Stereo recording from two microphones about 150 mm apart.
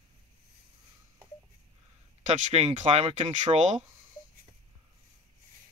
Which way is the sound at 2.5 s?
45° right (ahead or behind).